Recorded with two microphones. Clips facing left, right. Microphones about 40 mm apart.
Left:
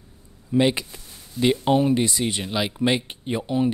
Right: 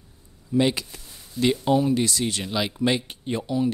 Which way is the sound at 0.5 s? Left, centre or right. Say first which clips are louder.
Left 2 dB; left.